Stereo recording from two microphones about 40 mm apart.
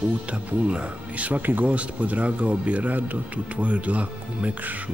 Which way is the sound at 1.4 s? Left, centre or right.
Right.